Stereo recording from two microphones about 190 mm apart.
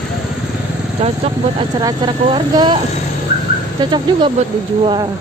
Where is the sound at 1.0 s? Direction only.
30° right (ahead or behind).